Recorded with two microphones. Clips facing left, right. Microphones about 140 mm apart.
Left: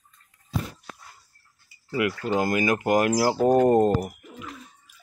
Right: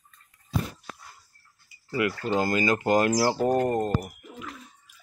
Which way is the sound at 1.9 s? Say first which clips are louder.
Left 1 dB; 15° left (ahead or behind).